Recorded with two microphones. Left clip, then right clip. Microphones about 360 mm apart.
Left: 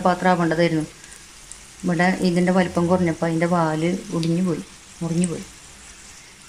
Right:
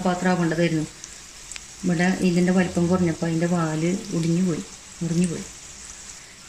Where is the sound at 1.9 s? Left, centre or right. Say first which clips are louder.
Left 3 dB; left.